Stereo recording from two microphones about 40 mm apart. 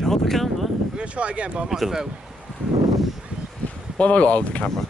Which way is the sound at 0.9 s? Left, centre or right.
Right.